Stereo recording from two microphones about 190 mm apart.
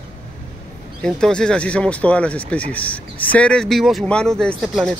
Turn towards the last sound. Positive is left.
turn(degrees=0)  # may be behind; listen again after turning